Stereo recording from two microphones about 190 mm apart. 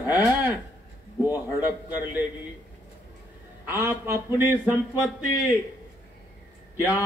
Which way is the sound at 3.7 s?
15° right (ahead or behind).